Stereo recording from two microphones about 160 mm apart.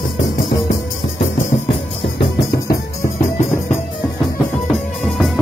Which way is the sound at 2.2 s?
65° left (ahead or behind).